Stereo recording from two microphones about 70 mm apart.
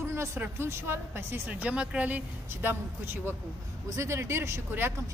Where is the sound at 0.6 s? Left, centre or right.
Right.